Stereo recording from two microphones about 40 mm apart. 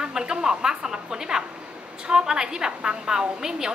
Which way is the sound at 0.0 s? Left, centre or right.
Centre.